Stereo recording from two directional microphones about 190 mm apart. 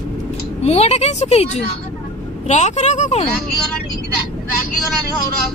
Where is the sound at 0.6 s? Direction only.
35° left (ahead or behind).